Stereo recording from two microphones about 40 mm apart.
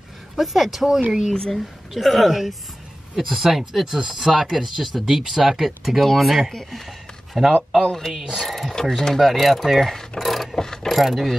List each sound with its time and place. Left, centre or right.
0.4 s speech: centre
1.3 s speech: centre
2.0 s speech: centre
7.8 s speech: centre
8.1 s speech: centre
10.6 s mechanisms: centre
10.9 s speech: centre